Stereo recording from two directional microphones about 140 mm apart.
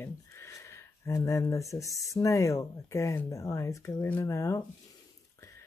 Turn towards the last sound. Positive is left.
turn(degrees=20)  # may be behind; listen again after turning